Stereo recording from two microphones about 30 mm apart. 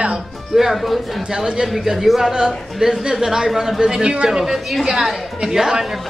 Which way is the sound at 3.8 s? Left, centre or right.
Right.